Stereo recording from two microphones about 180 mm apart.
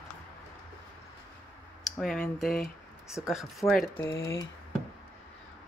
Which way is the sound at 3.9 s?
15° left (ahead or behind).